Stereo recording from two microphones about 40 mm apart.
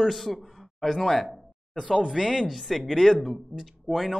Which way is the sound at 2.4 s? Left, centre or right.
Centre.